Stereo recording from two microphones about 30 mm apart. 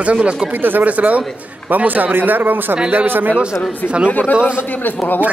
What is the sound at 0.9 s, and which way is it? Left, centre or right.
Speech, right.